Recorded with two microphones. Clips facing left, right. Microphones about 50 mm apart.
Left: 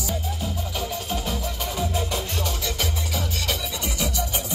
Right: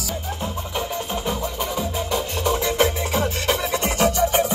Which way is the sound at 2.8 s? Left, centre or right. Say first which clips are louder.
Right 9 dB; right.